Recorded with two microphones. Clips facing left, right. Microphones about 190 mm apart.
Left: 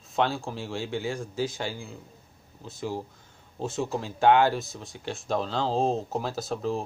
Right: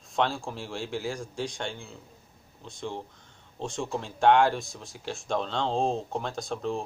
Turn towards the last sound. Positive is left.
turn(degrees=0)  # may be behind; listen again after turning